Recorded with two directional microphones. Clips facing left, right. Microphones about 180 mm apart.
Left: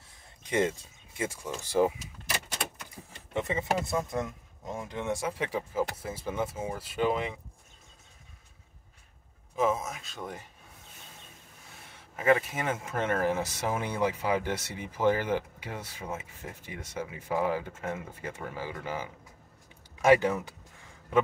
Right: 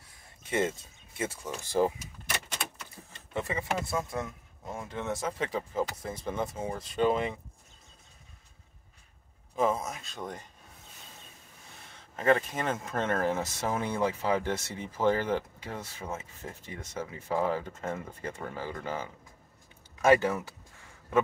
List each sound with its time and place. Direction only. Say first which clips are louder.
0.5 s speech: left 2 dB; 15° left (ahead or behind)
2.8 s a sound: left 2 dB; 15° left (ahead or behind)
3.9 s speech: left 2 dB; 20° left (ahead or behind); by 7.2 s 5° left (ahead or behind)
9.6 s speech: even; 5° left (ahead or behind)
11.9 s speech: left 1 dB; 10° left (ahead or behind)